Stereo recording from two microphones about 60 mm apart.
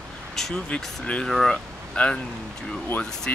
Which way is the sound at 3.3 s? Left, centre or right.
Left.